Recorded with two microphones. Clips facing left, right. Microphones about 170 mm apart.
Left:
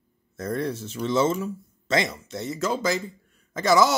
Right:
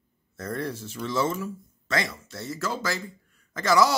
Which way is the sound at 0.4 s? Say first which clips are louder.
Left 4 dB; 20° left (ahead or behind).